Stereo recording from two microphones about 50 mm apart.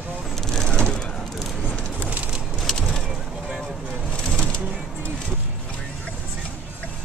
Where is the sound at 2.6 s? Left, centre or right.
Centre.